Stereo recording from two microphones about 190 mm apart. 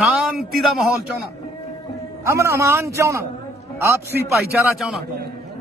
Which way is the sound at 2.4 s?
15° right (ahead or behind).